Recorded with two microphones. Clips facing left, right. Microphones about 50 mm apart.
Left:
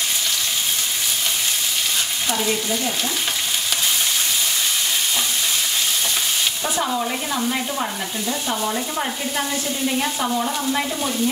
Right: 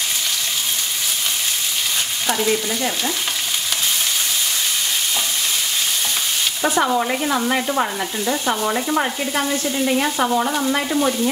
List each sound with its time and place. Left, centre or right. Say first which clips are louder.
6.6 s stir: right 9 dB; right
7.4 s stir: right 4 dB; right
8.3 s frying: right 4 dB; right
10.3 s frying: right 3 dB; right